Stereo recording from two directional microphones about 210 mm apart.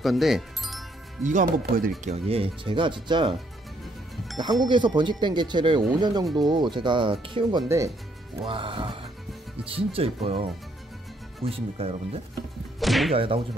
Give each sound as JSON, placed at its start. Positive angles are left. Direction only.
{"t": 0.0, "sound": "music", "side_deg": 0}
{"t": 1.2, "sound": "speech", "side_deg": -40}
{"t": 2.0, "sound": "speech", "side_deg": -30}
{"t": 4.6, "sound": "speech", "side_deg": -20}
{"t": 7.6, "sound": "speech", "side_deg": -15}
{"t": 8.4, "sound": "speech", "side_deg": -25}
{"t": 12.8, "sound": "whip", "side_deg": 0}
{"t": 13.1, "sound": "speech", "side_deg": -25}